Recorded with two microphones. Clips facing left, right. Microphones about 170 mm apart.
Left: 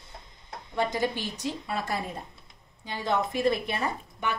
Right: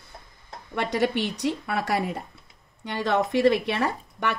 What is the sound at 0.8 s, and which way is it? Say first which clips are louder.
A woman's voice: right 4 dB; 70° right (ahead or behind).